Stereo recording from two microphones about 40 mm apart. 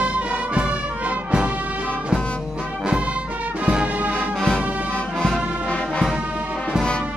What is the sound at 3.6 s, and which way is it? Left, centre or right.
Music, right.